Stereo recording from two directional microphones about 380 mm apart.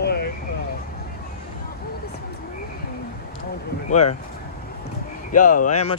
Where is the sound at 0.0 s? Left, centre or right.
Left.